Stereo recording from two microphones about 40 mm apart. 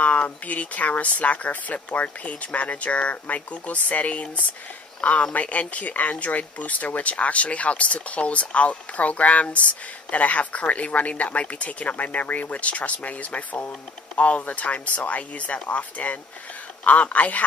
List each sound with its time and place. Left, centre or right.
0.0 s speech: left